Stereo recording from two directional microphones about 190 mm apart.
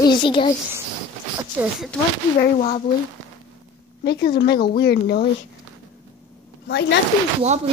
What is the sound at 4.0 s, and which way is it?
Speech, 60° left (ahead or behind).